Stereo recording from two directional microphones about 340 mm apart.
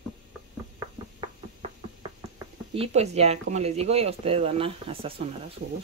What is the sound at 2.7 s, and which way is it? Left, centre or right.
Speech, centre.